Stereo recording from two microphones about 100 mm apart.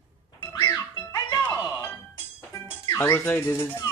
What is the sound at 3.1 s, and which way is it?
Speech, 25° left (ahead or behind).